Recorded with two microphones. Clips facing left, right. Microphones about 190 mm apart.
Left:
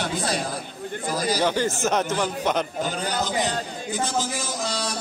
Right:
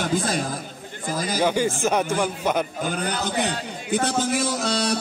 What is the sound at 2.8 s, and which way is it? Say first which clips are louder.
A man's voice: right 1 dB; 60° right (ahead or behind).